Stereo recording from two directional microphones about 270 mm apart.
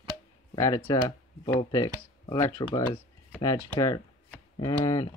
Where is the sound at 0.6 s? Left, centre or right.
Centre.